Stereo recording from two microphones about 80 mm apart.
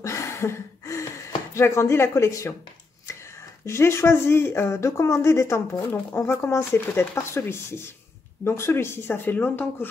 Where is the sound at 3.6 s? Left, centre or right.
Left.